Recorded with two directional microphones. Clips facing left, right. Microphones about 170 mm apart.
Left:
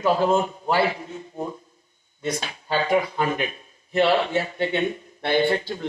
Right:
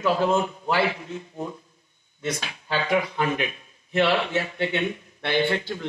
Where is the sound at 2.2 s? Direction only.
35° left (ahead or behind).